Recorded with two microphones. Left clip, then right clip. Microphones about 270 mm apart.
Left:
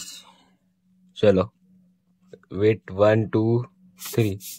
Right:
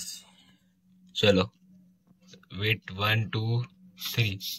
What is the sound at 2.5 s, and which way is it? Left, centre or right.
Speech, centre.